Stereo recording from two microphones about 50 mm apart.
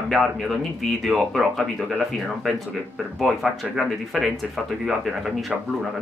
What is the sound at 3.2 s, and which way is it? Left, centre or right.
Speech, centre.